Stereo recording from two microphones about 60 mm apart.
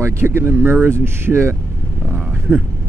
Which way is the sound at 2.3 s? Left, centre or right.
Right.